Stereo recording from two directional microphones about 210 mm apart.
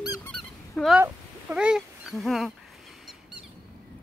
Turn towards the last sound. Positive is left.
turn(degrees=0)  # may be behind; listen again after turning